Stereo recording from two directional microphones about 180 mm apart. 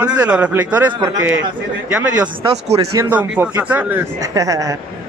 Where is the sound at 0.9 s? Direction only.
25° right (ahead or behind).